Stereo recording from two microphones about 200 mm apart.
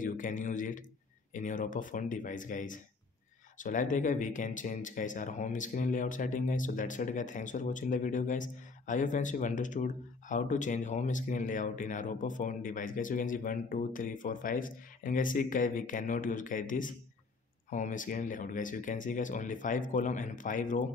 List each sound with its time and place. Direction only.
0.0 s speech: 40° left (ahead or behind)